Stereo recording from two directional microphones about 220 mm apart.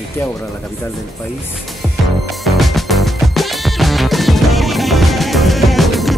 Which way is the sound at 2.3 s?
Centre (ahead or behind).